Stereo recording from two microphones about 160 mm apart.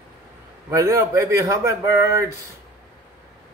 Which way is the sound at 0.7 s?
20° right (ahead or behind).